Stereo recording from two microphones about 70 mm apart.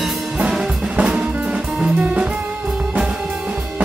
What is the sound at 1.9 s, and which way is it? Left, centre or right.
Jazz, centre.